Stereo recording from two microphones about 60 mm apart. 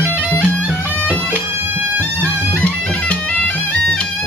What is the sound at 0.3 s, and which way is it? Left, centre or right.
Bagpipes, left.